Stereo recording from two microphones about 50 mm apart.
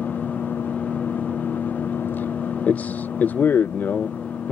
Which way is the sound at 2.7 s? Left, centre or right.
Left.